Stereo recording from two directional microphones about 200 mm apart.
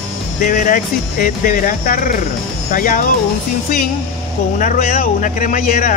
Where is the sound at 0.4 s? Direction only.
40° left (ahead or behind).